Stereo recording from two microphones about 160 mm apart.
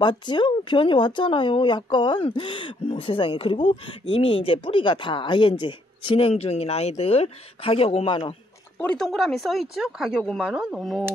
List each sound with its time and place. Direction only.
0.0 s speech: 30° left (ahead or behind)
8.7 s speech: 5° left (ahead or behind)